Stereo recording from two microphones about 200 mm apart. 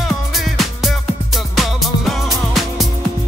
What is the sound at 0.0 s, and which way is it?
Music, centre (ahead or behind).